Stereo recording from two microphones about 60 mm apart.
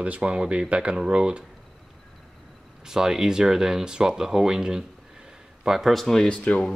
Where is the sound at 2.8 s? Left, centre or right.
Centre.